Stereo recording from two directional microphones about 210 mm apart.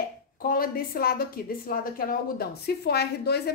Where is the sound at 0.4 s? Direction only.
45° left (ahead or behind).